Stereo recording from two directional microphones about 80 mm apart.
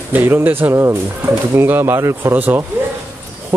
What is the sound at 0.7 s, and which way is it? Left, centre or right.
Speech, right.